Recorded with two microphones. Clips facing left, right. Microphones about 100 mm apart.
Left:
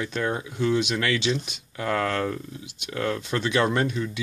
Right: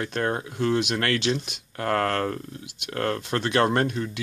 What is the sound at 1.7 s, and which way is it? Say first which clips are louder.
Speech: right 1 dB; 60° right (ahead or behind).